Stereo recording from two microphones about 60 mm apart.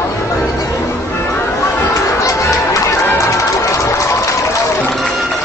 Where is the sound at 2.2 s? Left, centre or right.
Left.